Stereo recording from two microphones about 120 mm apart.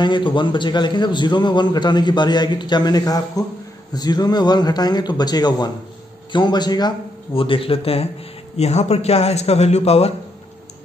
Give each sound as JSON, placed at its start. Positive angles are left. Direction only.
{"t": 0.0, "sound": "a man's voice", "side_deg": 40}
{"t": 7.3, "sound": "a man's voice", "side_deg": 50}